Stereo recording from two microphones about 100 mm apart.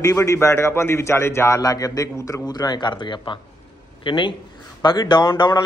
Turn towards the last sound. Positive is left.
turn(degrees=45)  # may be behind; listen again after turning